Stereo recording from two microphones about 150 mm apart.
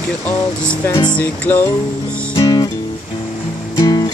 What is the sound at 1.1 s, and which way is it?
Music, 10° left (ahead or behind).